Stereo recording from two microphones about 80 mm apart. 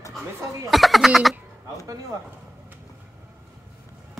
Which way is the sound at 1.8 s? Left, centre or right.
Right.